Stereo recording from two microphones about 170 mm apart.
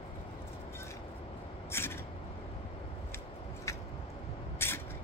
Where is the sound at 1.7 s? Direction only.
15° left (ahead or behind).